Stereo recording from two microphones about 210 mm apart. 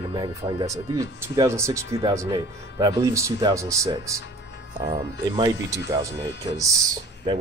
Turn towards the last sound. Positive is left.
turn(degrees=-15)  # may be behind; listen again after turning